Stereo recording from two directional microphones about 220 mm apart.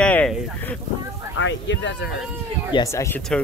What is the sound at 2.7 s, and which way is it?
Speech, 15° left (ahead or behind).